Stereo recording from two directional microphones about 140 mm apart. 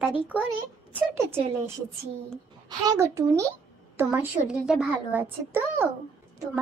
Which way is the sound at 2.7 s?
25° right (ahead or behind).